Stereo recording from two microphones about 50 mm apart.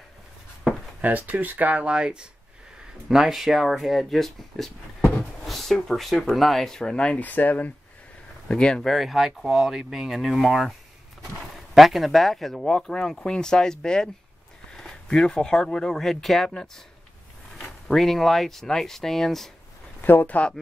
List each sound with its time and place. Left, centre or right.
1.0 s speech: right; by 2.2 s centre
3.1 s speech: centre
5.1 s a sound: centre
6.3 s speech: centre
6.8 s speech: centre
7.2 s speech: left
8.5 s speech: centre
8.8 s speech: centre
17.6 s speech: centre
20.0 s speech: left